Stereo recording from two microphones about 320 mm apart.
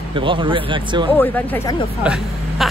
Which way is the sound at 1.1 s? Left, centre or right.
Centre.